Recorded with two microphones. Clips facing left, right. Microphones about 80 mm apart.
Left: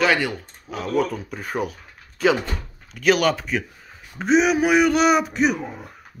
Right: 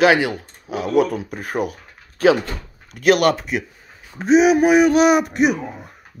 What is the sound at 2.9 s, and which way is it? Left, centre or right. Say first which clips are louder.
Speech: right 3 dB; right.